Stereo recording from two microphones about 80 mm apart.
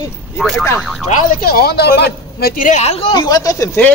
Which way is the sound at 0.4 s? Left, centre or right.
Centre.